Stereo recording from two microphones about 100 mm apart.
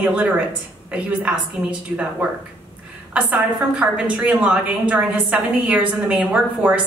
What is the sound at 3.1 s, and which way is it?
A woman's voice, 15° right (ahead or behind).